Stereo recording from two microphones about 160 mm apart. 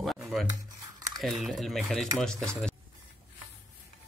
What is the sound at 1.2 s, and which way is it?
Speech, centre (ahead or behind).